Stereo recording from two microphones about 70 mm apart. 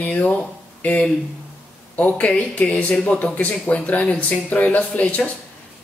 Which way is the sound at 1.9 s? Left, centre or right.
Left.